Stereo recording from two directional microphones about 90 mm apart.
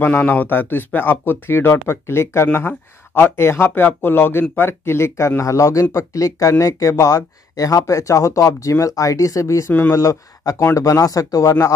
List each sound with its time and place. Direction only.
0.0 s speech: 20° left (ahead or behind)
9.7 s speech: 20° left (ahead or behind)
9.9 s speech: 40° left (ahead or behind)